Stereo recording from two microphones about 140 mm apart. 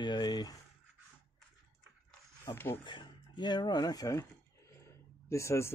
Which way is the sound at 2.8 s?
35° left (ahead or behind).